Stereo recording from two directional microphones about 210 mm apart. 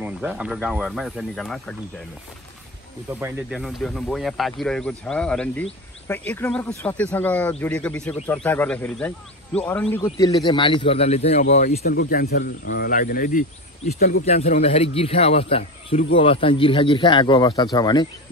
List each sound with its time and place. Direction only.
0.0 s speech: 5° right (ahead or behind)
3.2 s speech: 10° right (ahead or behind); by 10.0 s 10° left (ahead or behind)
10.0 s speech: 20° left (ahead or behind); by 11.8 s 35° left (ahead or behind)
11.8 s speech: 50° left (ahead or behind)
14.2 s speech: 30° left (ahead or behind)